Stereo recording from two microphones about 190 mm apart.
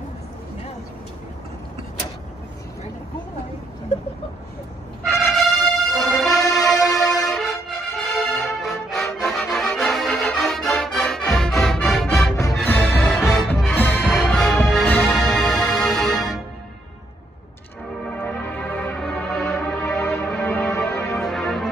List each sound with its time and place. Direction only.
5.0 s music: centre (ahead or behind)
6.2 s music: 20° left (ahead or behind)
6.5 s music: centre (ahead or behind)
18.1 s music: 5° left (ahead or behind)
21.0 s music: centre (ahead or behind)